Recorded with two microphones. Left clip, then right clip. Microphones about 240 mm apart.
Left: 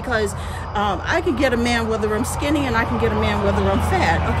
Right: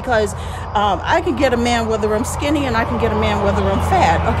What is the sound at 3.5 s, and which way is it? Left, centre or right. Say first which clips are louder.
Speech: right 2 dB; right.